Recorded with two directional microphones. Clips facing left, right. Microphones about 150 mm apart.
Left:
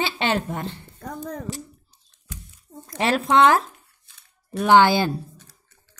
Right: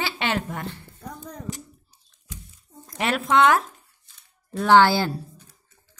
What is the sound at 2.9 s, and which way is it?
Speech, 35° left (ahead or behind).